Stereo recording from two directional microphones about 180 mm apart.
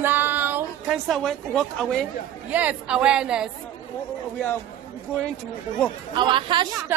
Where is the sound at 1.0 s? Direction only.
Centre (ahead or behind).